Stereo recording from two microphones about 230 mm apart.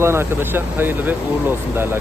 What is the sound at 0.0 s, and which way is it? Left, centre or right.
Speech, centre.